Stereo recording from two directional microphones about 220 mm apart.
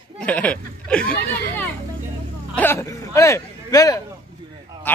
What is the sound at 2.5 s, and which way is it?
A man's voice, 10° left (ahead or behind).